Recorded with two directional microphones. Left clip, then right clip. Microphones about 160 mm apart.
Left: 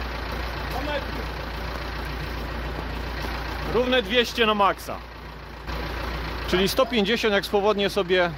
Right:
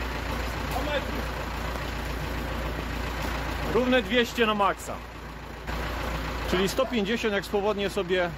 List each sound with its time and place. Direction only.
3.9 s speech: 70° left (ahead or behind)
6.5 s speech: 35° left (ahead or behind)